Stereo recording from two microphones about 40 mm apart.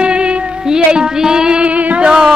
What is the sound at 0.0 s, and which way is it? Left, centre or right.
Music, right.